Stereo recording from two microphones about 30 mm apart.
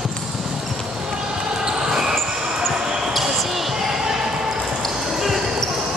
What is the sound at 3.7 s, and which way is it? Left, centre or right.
Basketball bounce, centre.